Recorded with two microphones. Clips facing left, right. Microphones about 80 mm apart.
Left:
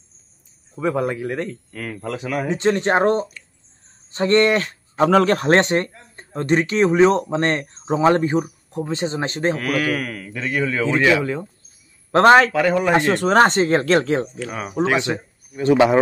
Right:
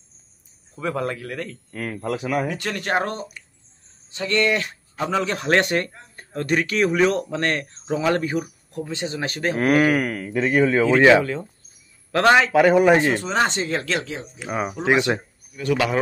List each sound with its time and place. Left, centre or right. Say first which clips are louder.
0.7 s speech: left 4 dB; centre
1.7 s speech: right 1 dB; centre
2.4 s speech: left 8 dB; left
5.0 s speech: left 8 dB; left
5.5 s speech: left 3 dB; left
9.6 s speech: right 4 dB; right
12.1 s a man's voice: left 5 dB; left
12.5 s speech: right 3 dB; centre
12.9 s speech: left 2 dB; left
13.4 s speech: left 7 dB; left
14.4 s speech: left 2 dB; centre
15.5 s speech: left 7 dB; left